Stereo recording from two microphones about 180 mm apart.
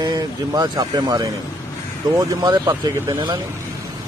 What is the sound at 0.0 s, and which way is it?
Speech, 20° right (ahead or behind).